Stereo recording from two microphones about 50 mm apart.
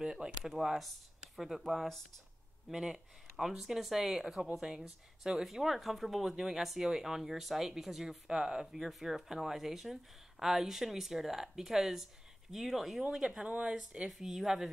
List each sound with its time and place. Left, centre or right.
0.0 s speech: centre
2.7 s speech: centre
13.5 s speech: centre
14.0 s speech: centre